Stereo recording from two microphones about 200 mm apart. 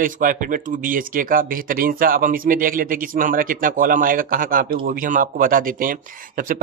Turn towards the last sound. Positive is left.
turn(degrees=-45)  # may be behind; listen again after turning